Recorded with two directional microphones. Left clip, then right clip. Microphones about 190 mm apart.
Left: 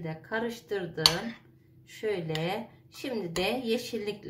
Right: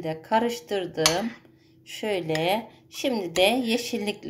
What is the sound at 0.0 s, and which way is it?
A woman's voice, 45° right (ahead or behind).